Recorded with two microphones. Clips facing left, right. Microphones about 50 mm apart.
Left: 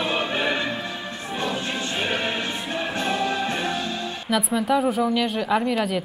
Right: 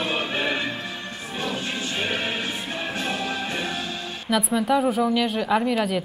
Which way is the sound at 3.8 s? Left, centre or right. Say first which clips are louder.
Left 3 dB; left.